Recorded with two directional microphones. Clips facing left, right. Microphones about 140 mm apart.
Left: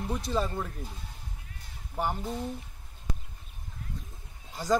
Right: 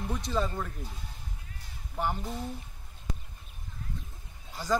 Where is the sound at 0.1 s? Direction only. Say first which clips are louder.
Left 1 dB; 10° left (ahead or behind).